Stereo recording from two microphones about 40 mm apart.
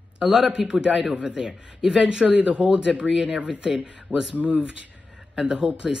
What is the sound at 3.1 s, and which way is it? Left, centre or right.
Speech, right.